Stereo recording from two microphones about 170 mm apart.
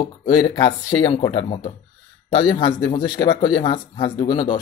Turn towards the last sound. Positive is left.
turn(degrees=30)  # may be behind; listen again after turning